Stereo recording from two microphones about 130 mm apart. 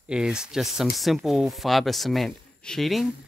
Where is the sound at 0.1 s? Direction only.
5° right (ahead or behind).